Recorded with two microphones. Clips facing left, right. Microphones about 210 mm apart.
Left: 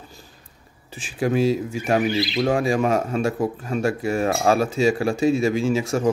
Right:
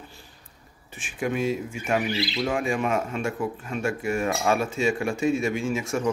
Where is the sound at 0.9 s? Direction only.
35° left (ahead or behind).